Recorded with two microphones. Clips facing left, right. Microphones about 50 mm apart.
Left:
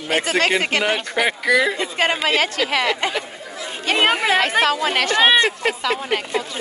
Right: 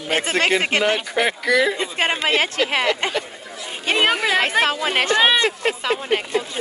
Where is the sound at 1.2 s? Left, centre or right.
Centre.